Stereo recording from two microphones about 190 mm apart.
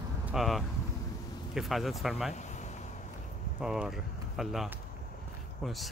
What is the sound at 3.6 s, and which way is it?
Speech, 5° right (ahead or behind).